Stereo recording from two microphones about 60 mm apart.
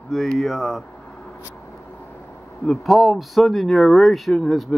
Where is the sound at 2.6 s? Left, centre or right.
Centre.